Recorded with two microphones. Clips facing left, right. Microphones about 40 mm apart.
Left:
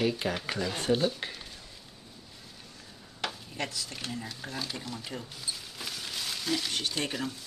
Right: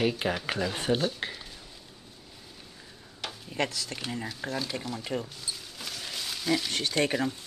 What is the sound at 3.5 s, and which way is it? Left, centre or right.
Speech, right.